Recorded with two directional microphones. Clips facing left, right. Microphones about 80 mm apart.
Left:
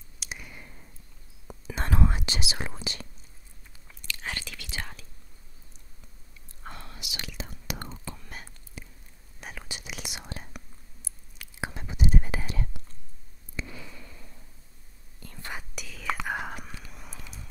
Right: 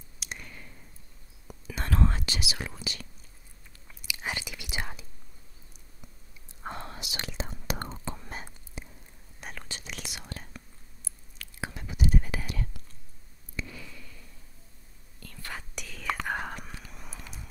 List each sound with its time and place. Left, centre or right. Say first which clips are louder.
0.2 s clicking: left 1 dB; centre
1.5 s whispering: left 2 dB; left
3.8 s whispering: right 1 dB; centre
6.6 s whispering: right 5 dB; right
8.0 s whispering: right 3 dB; right
9.4 s whispering: left 1 dB; centre; by 12.8 s left
13.6 s a sound: left 1 dB; left
15.1 s whispering: left 2 dB; left
15.7 s whispering: even; centre